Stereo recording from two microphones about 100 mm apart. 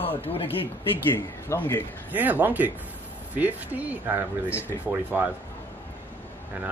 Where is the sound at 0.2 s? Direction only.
70° left (ahead or behind).